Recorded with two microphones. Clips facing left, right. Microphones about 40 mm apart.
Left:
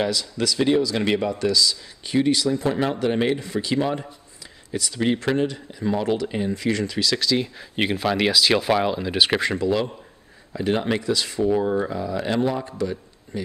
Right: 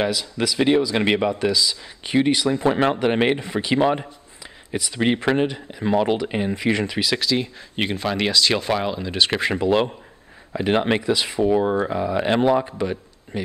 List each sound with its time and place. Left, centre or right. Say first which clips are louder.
0.0 s speech: right 1 dB; centre
0.7 s speech: right 2 dB; right
4.6 s speech: right 1 dB; right
4.9 s speech: right 2 dB; right
7.2 s speech: even; centre
9.6 s speech: right 3 dB; right